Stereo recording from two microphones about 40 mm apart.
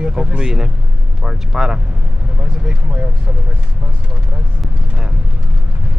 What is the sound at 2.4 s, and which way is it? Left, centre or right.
Speech, right.